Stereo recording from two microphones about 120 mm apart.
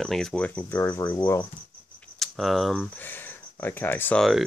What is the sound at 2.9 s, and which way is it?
Speech, 15° left (ahead or behind).